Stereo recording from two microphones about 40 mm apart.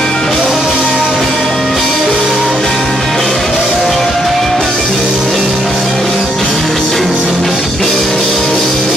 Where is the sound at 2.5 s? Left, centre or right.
Centre.